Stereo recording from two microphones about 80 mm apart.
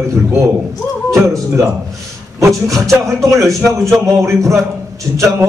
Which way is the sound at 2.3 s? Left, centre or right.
Right.